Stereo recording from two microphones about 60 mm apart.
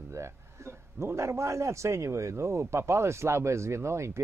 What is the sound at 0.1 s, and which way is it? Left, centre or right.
A man's voice, right.